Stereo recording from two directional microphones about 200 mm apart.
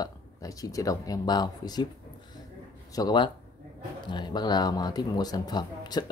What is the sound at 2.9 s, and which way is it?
Speech, 20° left (ahead or behind).